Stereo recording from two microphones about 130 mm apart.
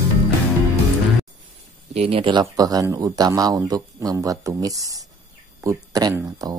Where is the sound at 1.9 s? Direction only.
45° right (ahead or behind).